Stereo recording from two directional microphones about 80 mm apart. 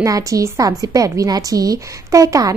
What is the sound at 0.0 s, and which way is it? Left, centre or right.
A woman's voice, right.